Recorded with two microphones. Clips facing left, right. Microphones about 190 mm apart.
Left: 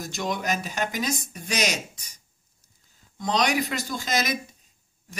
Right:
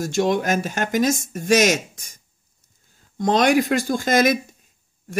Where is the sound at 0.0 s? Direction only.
50° right (ahead or behind).